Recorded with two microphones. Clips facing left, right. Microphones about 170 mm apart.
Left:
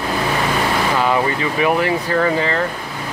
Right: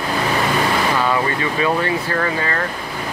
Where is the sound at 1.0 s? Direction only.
15° left (ahead or behind).